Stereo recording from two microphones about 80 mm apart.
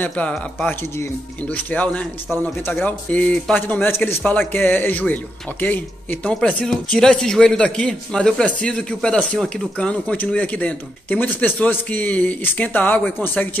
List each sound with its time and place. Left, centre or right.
0.0 s a man's voice: centre